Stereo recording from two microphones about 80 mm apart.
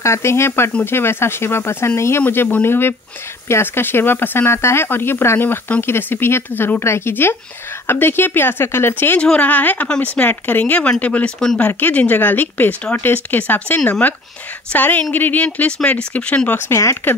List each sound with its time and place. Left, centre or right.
0.0 s speech: left
9.2 s speech: centre
11.3 s speech: centre
11.6 s speech: centre
16.5 s speech: left